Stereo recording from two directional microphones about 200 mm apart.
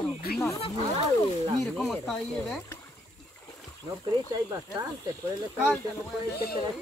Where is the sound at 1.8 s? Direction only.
Centre (ahead or behind).